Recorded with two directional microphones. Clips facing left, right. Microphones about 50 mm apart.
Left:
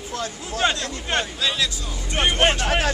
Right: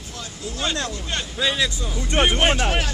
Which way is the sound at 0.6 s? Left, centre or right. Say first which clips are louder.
Left 5 dB; left.